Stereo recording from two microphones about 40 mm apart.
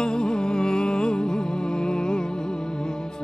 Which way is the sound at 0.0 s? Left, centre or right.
Centre.